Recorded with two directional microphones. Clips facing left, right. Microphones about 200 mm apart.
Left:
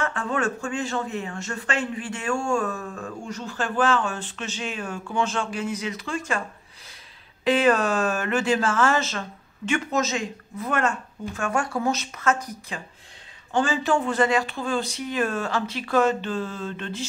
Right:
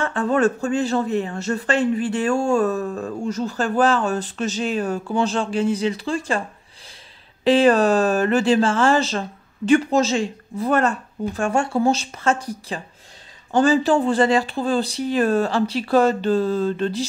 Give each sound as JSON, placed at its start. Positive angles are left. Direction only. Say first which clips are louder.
{"t": 0.0, "sound": "speech", "louder": "right 7 dB", "side_deg": -35}
{"t": 7.4, "sound": "speech", "louder": "right 5 dB", "side_deg": -30}